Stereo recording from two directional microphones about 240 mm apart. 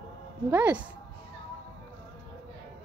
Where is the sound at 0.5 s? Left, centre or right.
Centre.